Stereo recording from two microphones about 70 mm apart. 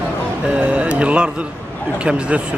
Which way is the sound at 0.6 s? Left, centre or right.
Centre.